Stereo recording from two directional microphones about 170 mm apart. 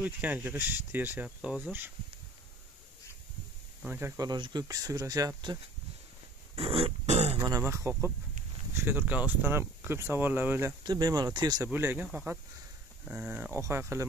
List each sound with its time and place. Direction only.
0.0 s speech: 10° right (ahead or behind)
3.8 s speech: 15° right (ahead or behind)
6.5 s a sound: 35° right (ahead or behind)
7.3 s speech: 20° right (ahead or behind)
10.8 s speech: 25° right (ahead or behind)
11.7 s speech: 10° right (ahead or behind)